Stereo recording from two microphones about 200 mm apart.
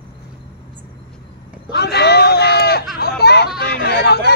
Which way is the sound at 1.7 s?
55° left (ahead or behind).